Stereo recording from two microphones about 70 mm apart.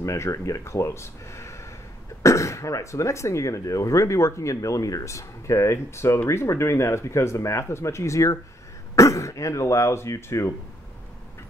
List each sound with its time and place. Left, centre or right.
0.0 s speech: left